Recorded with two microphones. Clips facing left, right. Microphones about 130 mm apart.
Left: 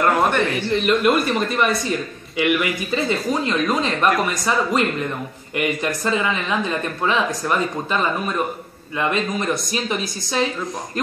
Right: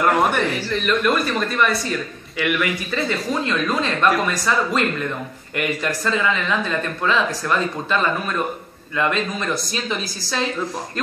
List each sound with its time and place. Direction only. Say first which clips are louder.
0.0 s a man's voice: even; 5° right (ahead or behind)
0.7 s speech: left 4 dB; 20° left (ahead or behind)